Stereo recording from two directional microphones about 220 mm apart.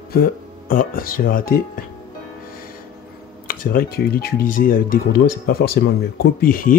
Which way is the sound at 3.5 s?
40° left (ahead or behind).